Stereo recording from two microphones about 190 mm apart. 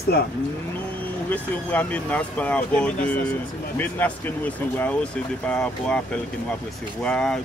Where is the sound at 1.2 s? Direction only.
10° left (ahead or behind).